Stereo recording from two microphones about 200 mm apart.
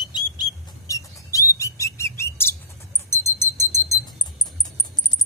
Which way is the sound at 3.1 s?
15° left (ahead or behind).